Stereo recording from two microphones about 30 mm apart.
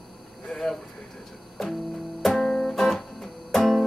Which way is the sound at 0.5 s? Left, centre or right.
Left.